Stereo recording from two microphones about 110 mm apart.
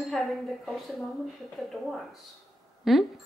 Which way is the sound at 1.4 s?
Centre (ahead or behind).